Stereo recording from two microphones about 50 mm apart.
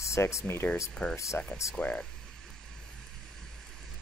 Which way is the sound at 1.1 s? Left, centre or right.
Left.